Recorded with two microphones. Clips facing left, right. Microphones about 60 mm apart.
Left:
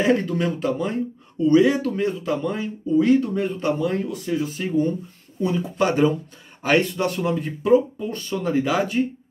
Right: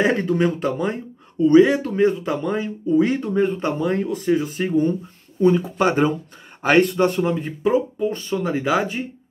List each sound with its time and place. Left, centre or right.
0.0 s speech: right
7.6 s speech: centre